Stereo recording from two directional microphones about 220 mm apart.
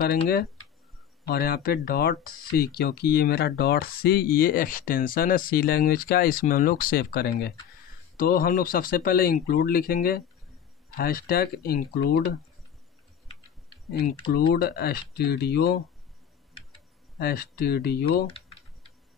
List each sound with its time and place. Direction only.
1.2 s speech: 45° left (ahead or behind)
14.5 s speech: 45° left (ahead or behind)
17.2 s speech: 45° left (ahead or behind)